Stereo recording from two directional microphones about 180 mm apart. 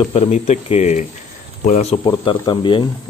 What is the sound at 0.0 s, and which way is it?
Speech, 30° left (ahead or behind).